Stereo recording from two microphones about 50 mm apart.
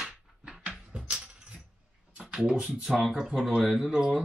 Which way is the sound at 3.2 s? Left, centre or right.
Centre.